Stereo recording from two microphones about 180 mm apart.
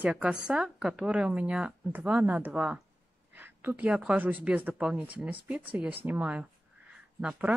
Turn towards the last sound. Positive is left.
turn(degrees=-5)  # may be behind; listen again after turning